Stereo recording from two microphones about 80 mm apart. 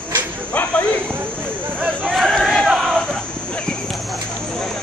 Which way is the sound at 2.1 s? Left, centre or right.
Centre.